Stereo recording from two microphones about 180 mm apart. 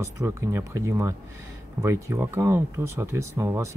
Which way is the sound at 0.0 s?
15° right (ahead or behind).